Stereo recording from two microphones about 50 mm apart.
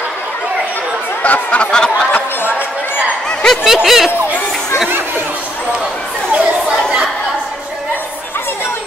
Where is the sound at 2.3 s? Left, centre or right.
Left.